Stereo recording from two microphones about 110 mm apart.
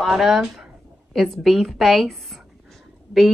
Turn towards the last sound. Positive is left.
turn(degrees=0)  # may be behind; listen again after turning